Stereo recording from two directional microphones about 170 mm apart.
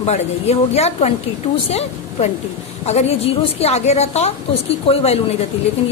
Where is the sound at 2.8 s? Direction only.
40° left (ahead or behind).